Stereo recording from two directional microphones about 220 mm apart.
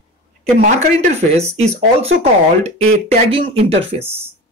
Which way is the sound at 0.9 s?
30° right (ahead or behind).